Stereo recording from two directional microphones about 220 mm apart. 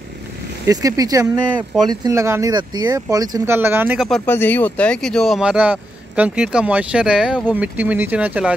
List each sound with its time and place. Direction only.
0.7 s speech: 15° right (ahead or behind)
4.3 s speech: 10° left (ahead or behind)